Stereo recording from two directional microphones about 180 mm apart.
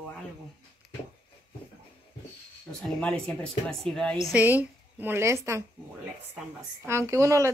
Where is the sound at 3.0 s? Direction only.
5° left (ahead or behind).